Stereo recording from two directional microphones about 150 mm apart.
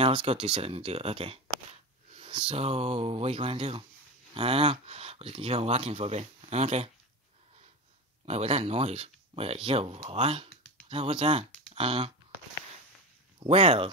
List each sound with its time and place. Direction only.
0.0 s speech: 40° right (ahead or behind)
8.3 s speech: 45° right (ahead or behind)
13.4 s speech: 40° right (ahead or behind)